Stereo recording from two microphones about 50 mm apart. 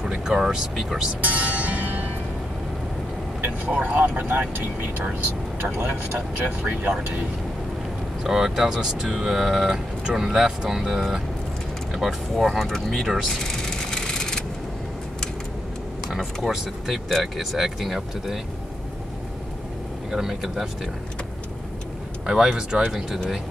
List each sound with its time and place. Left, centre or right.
0.0 s vehicle: centre
0.7 s speech: centre
1.2 s music: right
3.3 s speech: right
5.8 s speech: right
8.2 s speech: centre
13.3 s vehicle: centre
16.4 s speech: centre
20.1 s speech: centre
22.2 s speech: centre